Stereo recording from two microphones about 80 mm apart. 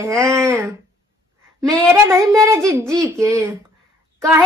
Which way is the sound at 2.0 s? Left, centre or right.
Right.